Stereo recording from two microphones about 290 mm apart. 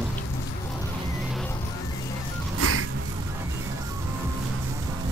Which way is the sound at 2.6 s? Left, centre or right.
Right.